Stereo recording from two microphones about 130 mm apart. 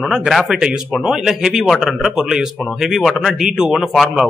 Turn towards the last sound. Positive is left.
turn(degrees=0)  # may be behind; listen again after turning